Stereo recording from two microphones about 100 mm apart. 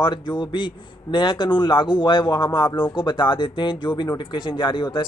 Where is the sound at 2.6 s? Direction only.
20° left (ahead or behind).